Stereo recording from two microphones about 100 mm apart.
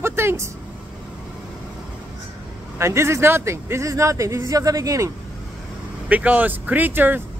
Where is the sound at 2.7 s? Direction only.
25° right (ahead or behind).